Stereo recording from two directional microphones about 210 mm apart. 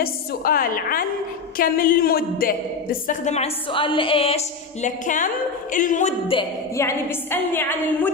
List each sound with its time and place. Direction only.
0.0 s a woman's voice: 45° left (ahead or behind)
6.7 s a woman's voice: 10° left (ahead or behind)